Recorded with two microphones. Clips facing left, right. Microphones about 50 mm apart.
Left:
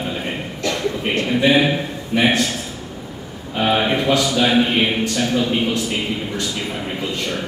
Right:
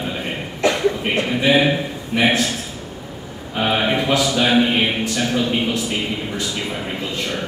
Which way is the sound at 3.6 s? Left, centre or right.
Centre.